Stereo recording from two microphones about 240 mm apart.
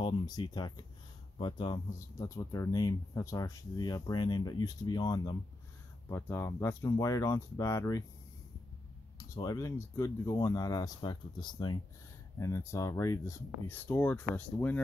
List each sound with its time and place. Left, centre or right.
0.0 s speech: centre
9.3 s speech: centre